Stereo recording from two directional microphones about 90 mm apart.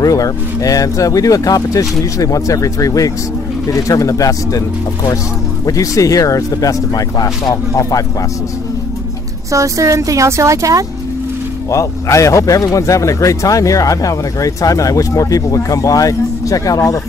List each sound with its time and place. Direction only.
0.0 s speech: 40° left (ahead or behind)
9.5 s speech: 35° right (ahead or behind)
11.7 s speech: 35° left (ahead or behind)